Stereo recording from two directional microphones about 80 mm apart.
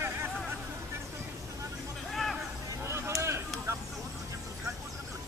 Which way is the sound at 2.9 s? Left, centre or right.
Right.